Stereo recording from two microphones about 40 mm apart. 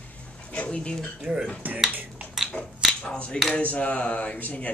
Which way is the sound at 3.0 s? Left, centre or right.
Left.